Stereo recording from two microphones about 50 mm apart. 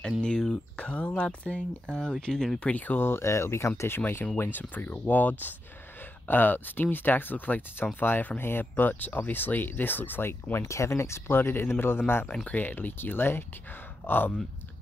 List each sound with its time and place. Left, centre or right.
0.2 s speech: centre
0.7 s speech: left
2.3 s speech: centre
2.6 s speech: left
3.0 s speech: left
3.9 s speech: left
10.6 s speech: left
11.2 s speech: left
12.4 s speech: left